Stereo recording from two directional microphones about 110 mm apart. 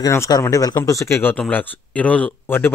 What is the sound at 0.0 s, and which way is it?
Speech, 30° left (ahead or behind).